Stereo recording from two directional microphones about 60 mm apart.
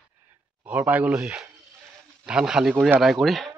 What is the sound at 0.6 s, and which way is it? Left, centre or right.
Speech, right.